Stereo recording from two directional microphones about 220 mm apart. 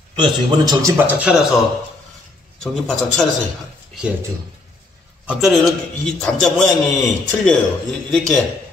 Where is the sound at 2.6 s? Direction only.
Centre (ahead or behind).